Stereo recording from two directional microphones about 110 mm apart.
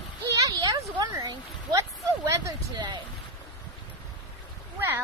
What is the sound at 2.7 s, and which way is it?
Speech, 40° right (ahead or behind).